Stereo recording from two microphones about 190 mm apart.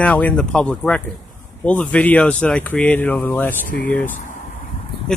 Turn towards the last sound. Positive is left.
turn(degrees=5)  # may be behind; listen again after turning